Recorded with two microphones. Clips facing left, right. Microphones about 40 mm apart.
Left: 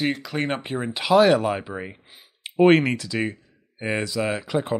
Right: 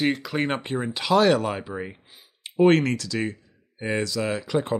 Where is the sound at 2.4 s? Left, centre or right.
Left.